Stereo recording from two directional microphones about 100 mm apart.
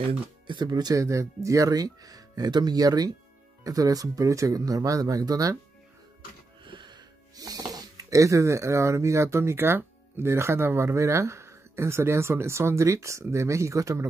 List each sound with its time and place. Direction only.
0.5 s speech: 45° right (ahead or behind)
6.6 s speech: 50° right (ahead or behind); by 14.0 s 30° right (ahead or behind)